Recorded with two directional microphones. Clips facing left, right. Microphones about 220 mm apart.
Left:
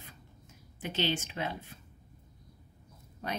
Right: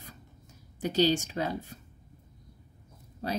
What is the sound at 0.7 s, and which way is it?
Speech, 40° right (ahead or behind).